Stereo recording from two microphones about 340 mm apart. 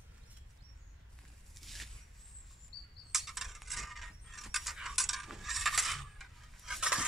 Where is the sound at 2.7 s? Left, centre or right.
Left.